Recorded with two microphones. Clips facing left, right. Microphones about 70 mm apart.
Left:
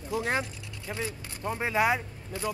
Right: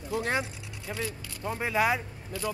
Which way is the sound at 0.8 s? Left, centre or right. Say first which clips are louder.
Even; left.